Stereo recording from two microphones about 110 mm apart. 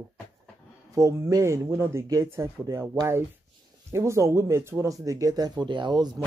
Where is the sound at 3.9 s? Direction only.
25° right (ahead or behind).